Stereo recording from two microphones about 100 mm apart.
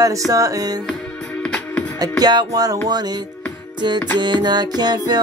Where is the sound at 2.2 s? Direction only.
45° right (ahead or behind).